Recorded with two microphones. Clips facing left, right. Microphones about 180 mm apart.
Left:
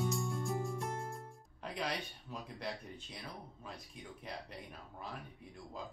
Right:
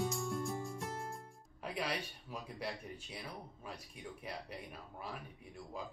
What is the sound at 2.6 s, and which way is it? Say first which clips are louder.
Speech: even; 5° right (ahead or behind).